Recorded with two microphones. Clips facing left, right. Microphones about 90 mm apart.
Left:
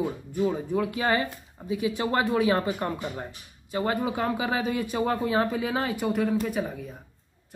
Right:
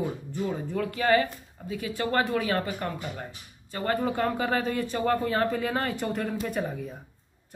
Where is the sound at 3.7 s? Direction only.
10° left (ahead or behind).